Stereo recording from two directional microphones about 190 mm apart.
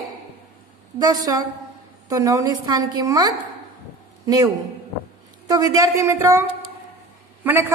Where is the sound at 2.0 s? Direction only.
15° right (ahead or behind).